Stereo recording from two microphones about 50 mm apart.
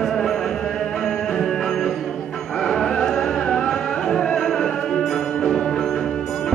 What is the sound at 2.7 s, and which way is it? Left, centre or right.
Music, centre.